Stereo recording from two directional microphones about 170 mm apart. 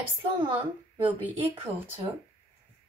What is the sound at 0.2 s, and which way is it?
Speech, 30° right (ahead or behind).